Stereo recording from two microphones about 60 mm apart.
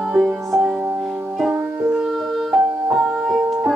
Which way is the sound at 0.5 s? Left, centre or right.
Centre.